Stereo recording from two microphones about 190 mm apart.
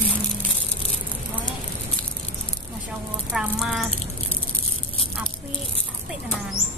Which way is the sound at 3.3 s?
Centre (ahead or behind).